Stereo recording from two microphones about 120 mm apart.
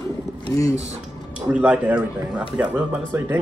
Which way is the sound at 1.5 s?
10° right (ahead or behind).